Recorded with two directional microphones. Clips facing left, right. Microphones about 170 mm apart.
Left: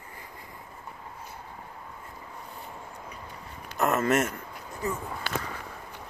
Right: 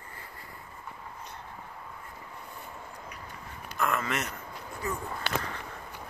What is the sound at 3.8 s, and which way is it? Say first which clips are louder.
Speech: left 6 dB; 45° left (ahead or behind).